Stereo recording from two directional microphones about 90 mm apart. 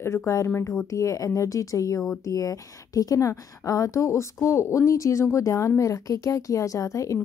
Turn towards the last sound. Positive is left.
turn(degrees=35)  # may be behind; listen again after turning